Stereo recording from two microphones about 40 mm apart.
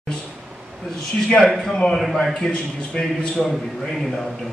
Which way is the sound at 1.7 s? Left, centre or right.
Centre.